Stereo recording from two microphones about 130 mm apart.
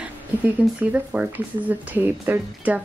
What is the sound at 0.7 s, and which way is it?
Speech, 10° right (ahead or behind).